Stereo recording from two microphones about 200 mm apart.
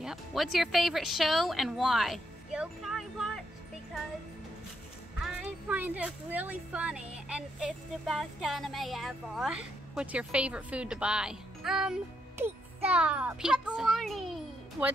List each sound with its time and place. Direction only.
0.0 s speech: centre (ahead or behind)
5.2 s speech: 5° right (ahead or behind)